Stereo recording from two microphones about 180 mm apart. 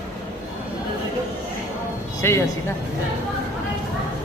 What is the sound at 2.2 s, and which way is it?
Speech, 15° left (ahead or behind).